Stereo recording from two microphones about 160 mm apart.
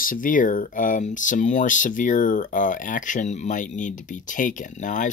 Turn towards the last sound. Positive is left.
turn(degrees=50)  # may be behind; listen again after turning